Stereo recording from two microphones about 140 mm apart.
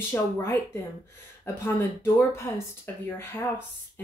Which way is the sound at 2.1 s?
15° left (ahead or behind).